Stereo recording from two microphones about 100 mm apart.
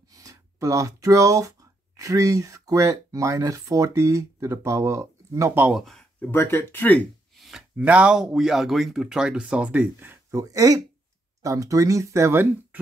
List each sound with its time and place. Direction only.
0.1 s speech: 35° right (ahead or behind)
5.7 s speech: centre (ahead or behind)
6.2 s speech: 20° left (ahead or behind)
7.3 s a sound: centre (ahead or behind)
7.7 s speech: 15° right (ahead or behind)
10.3 s speech: 35° right (ahead or behind)